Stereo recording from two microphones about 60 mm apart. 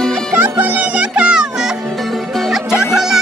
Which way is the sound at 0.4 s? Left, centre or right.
Right.